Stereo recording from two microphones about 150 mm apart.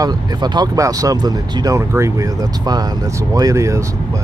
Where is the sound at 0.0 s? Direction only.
30° right (ahead or behind).